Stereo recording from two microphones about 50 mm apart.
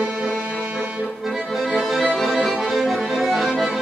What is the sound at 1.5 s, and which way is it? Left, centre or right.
Accordion, centre.